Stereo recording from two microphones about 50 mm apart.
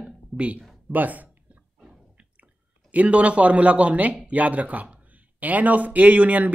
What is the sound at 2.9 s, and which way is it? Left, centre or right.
Speech, right.